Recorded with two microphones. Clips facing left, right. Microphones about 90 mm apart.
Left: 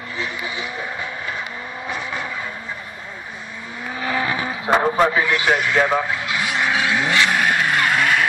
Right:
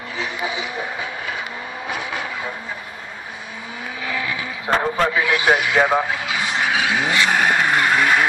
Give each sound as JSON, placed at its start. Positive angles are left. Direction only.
{"t": 0.2, "sound": "vehicle", "side_deg": -15}
{"t": 1.9, "sound": "vehicle", "side_deg": -10}
{"t": 4.3, "sound": "a sound", "side_deg": 45}
{"t": 4.6, "sound": "a sound", "side_deg": 15}
{"t": 5.1, "sound": "speech", "side_deg": -5}
{"t": 6.6, "sound": "vehicle", "side_deg": -15}
{"t": 8.0, "sound": "vehicle", "side_deg": -10}